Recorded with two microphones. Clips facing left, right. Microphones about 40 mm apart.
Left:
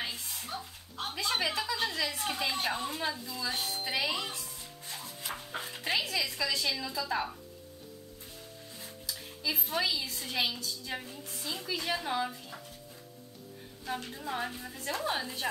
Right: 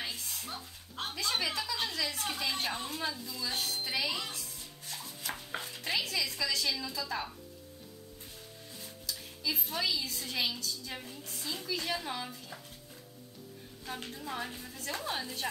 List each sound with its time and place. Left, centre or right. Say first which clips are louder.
0.0 s a sound: left 2 dB; centre
1.1 s a woman's voice: left 2 dB; centre
3.8 s music: left 5 dB; centre
5.0 s chopping: even; centre
5.6 s a woman's voice: left 4 dB; centre
9.0 s a woman's voice: left 1 dB; centre
14.1 s a woman's voice: left 3 dB; centre